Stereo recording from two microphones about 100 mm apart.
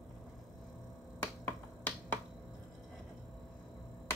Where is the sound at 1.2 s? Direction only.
15° left (ahead or behind).